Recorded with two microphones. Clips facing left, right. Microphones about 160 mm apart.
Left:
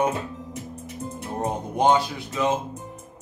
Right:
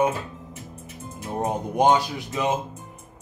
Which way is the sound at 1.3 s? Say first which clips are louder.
Right 3 dB; 15° right (ahead or behind).